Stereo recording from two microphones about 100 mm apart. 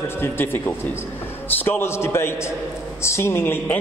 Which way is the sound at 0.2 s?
20° left (ahead or behind).